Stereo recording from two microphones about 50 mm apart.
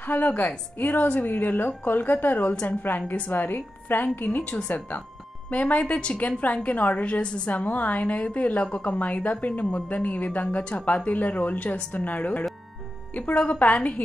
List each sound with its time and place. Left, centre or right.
0.0 s a woman's voice: left